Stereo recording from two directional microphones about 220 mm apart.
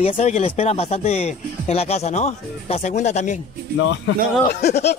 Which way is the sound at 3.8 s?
60° left (ahead or behind).